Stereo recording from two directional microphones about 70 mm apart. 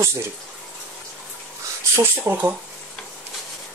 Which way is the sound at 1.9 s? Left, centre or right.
Right.